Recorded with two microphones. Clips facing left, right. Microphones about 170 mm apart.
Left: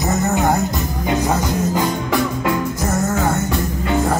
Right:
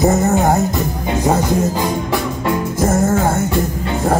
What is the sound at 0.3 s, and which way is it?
Music, 45° right (ahead or behind).